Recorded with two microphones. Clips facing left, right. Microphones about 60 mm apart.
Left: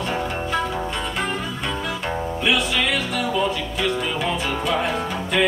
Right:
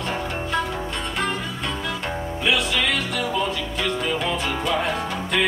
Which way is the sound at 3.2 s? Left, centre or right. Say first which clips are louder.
Left 2 dB; centre.